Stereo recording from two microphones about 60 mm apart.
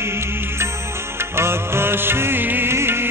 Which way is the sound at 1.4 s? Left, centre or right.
Right.